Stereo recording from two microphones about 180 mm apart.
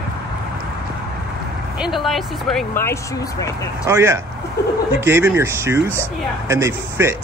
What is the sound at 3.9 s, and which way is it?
Speech, 15° right (ahead or behind).